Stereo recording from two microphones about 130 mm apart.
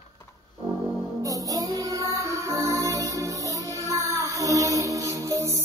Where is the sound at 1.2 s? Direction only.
25° right (ahead or behind).